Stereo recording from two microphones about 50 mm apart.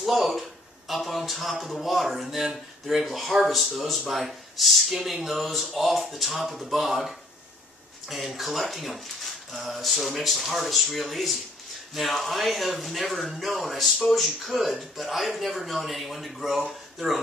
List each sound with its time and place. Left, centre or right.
0.0 s speech: centre